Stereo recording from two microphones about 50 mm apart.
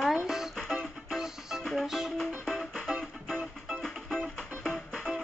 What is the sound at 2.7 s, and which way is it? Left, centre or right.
Music, right.